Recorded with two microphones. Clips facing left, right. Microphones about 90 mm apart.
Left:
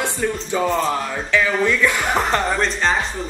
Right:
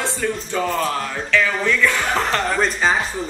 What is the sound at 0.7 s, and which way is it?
Speech, 25° left (ahead or behind).